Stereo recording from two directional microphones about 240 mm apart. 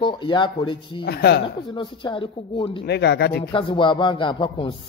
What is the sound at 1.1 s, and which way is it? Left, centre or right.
Speech, left.